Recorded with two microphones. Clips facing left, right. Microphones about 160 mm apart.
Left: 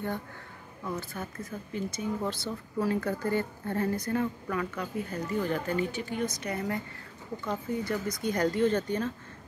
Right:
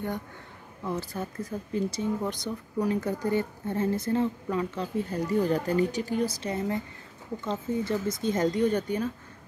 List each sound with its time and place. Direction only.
0.9 s speech: 30° right (ahead or behind)
2.2 s a woman's voice: 15° right (ahead or behind)